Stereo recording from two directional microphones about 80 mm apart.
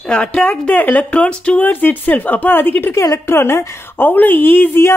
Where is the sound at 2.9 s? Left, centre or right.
Left.